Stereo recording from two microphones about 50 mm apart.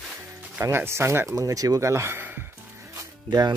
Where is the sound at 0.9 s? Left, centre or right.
Right.